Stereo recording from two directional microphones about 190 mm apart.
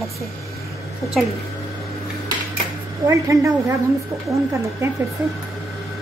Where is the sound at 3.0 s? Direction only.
15° right (ahead or behind).